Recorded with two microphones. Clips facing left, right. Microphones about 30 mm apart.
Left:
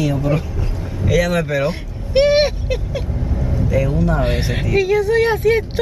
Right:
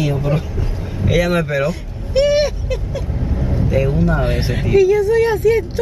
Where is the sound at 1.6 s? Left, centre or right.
Left.